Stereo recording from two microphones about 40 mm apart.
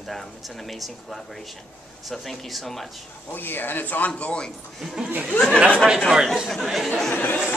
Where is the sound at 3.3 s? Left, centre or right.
Left.